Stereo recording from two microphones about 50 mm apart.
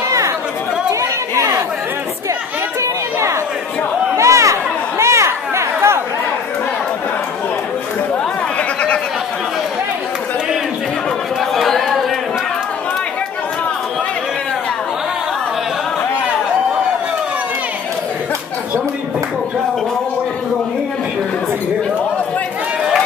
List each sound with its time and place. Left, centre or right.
1.3 s chatter: right
2.8 s a sound: right
4.2 s chatter: right
11.5 s chatter: centre